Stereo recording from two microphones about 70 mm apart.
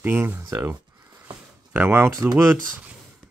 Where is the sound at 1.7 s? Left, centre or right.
Right.